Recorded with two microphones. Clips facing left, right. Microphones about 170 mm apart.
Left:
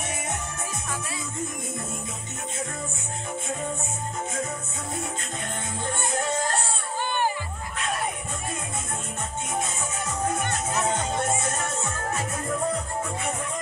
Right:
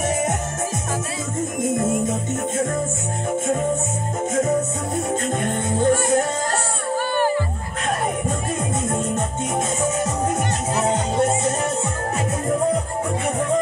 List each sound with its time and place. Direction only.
1.8 s music: 45° right (ahead or behind)
5.4 s music: 50° right (ahead or behind)
10.8 s music: 30° right (ahead or behind)